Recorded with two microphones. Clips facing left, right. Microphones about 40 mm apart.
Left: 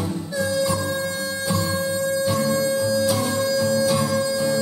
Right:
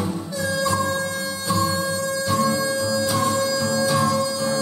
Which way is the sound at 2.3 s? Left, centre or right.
Centre.